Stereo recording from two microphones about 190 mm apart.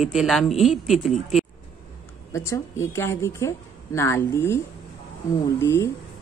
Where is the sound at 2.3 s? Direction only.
15° left (ahead or behind).